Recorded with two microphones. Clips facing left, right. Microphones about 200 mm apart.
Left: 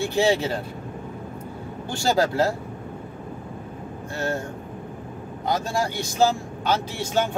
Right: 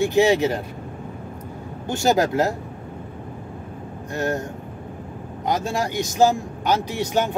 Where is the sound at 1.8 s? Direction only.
20° right (ahead or behind).